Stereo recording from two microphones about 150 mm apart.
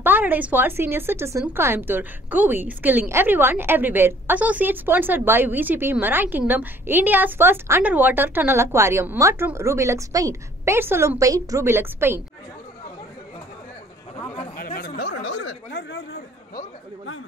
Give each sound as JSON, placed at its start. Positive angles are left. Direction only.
{"t": 0.0, "sound": "a woman's voice", "side_deg": -10}
{"t": 14.6, "sound": "chatter", "side_deg": 80}